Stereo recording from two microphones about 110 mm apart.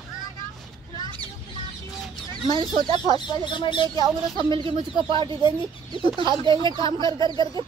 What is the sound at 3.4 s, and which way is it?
Speech, 45° left (ahead or behind).